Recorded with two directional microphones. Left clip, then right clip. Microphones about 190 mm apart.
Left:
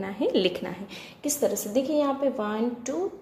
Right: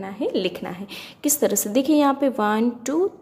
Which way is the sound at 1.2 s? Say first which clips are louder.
Right 5 dB; 35° right (ahead or behind).